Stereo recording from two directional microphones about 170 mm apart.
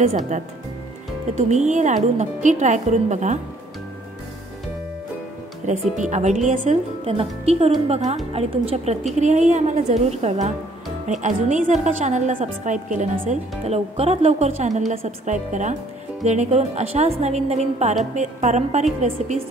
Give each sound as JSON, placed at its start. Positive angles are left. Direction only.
{"t": 0.0, "sound": "a woman's voice", "side_deg": -45}
{"t": 5.9, "sound": "a woman's voice", "side_deg": -45}
{"t": 7.1, "sound": "a woman's voice", "side_deg": -35}